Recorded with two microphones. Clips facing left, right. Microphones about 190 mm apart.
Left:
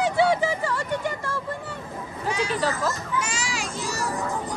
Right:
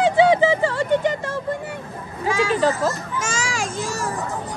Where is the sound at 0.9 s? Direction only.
20° right (ahead or behind).